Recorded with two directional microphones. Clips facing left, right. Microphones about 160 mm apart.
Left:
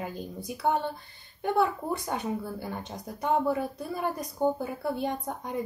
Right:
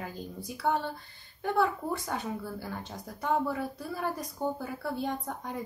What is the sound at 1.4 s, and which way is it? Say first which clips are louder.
Speech: left 2 dB; 15° left (ahead or behind).